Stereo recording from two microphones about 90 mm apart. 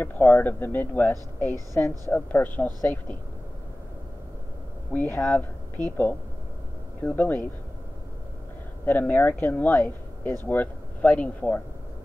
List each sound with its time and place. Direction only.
0.0 s speech: 20° left (ahead or behind)
4.9 s speech: 20° left (ahead or behind)
8.8 s speech: 20° left (ahead or behind)